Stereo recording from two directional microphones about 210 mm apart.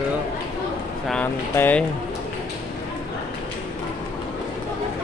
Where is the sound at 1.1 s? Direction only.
5° left (ahead or behind).